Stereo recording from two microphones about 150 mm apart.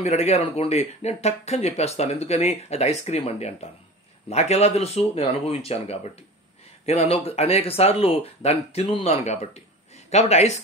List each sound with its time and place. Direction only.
0.0 s speech: 45° left (ahead or behind)